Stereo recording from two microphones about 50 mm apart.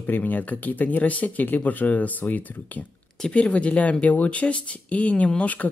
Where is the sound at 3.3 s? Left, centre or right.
Left.